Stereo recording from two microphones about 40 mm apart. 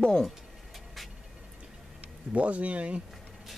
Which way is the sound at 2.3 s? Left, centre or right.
Right.